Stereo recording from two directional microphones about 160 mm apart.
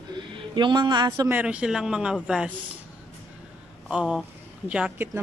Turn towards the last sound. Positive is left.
turn(degrees=-5)  # may be behind; listen again after turning